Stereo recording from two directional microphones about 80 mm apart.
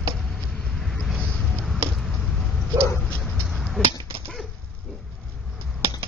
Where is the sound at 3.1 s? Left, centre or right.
Centre.